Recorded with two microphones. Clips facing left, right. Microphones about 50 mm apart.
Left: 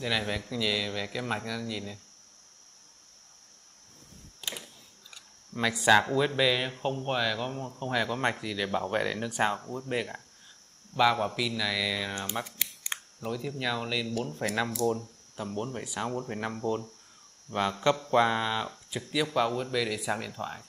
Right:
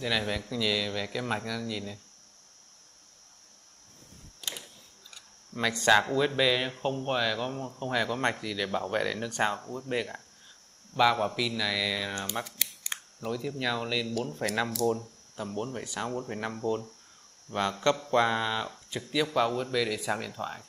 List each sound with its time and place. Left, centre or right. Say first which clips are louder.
0.0 s speech: right 1 dB; centre
4.4 s a sound: left 1 dB; centre
5.1 s speech: left 1 dB; centre
12.4 s camera: left 1 dB; centre
13.2 s speech: right 1 dB; centre